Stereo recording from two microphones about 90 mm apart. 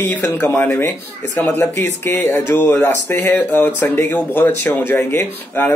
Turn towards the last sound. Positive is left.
turn(degrees=25)  # may be behind; listen again after turning